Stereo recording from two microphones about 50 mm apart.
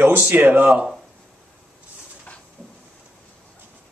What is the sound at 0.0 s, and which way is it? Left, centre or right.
Speech, right.